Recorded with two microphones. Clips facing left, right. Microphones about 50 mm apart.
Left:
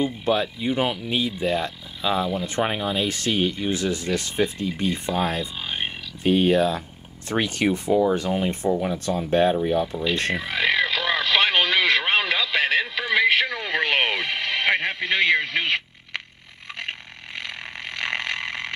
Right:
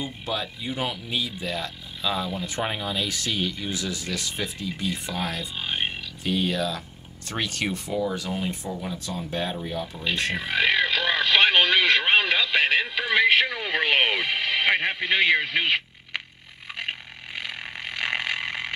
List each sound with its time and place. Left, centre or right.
0.0 s speech: left
3.1 s speech: left
5.6 s speech: centre
6.2 s speech: left
9.6 s speech: centre
10.3 s radio: centre
17.4 s vehicle: centre